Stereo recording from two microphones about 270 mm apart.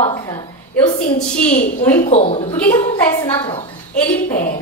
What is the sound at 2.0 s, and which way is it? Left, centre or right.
Speech, left.